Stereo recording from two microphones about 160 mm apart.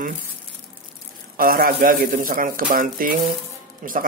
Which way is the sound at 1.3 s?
65° right (ahead or behind).